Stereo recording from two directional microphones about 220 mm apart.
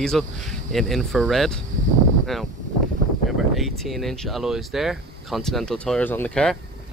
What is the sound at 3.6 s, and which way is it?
Speech, centre (ahead or behind).